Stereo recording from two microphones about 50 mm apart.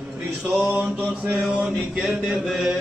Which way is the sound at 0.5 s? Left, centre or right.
Right.